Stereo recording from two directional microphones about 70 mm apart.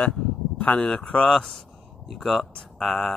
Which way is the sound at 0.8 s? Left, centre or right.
Centre.